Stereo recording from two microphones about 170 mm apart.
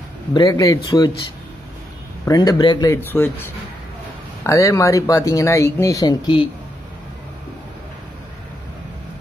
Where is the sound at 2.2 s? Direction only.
20° left (ahead or behind).